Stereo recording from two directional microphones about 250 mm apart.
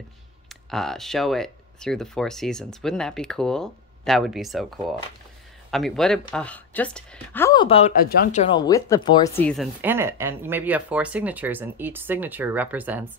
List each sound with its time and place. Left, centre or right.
0.5 s speech: centre
7.6 s speech: left
8.0 s speech: left; by 9.4 s centre
9.4 s speech: centre